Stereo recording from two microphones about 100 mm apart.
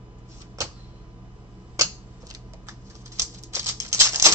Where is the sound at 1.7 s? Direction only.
35° right (ahead or behind).